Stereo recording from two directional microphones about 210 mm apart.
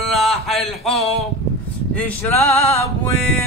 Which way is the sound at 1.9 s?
5° left (ahead or behind).